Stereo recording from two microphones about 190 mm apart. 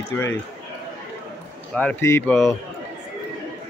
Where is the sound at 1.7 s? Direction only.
5° left (ahead or behind).